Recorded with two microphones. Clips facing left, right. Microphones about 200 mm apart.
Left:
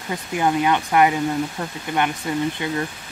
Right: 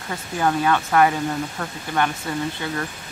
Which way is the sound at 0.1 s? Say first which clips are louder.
Left 1 dB; 15° left (ahead or behind).